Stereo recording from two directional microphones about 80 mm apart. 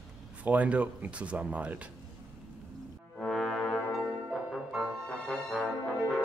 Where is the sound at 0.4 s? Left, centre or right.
Centre.